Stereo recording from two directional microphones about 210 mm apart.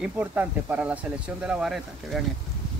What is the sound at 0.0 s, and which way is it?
Speech, 10° right (ahead or behind).